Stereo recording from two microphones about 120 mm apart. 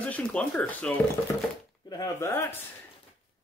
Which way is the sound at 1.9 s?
25° left (ahead or behind).